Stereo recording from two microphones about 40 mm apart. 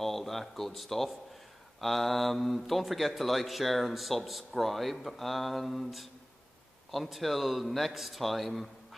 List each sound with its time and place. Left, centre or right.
0.0 s speech: centre